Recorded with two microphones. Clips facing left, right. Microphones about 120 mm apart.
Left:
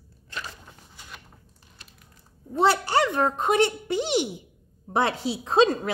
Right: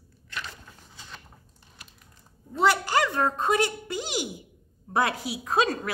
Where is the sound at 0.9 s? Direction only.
10° left (ahead or behind).